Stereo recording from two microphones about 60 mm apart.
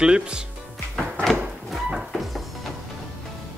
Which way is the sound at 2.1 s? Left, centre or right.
Centre.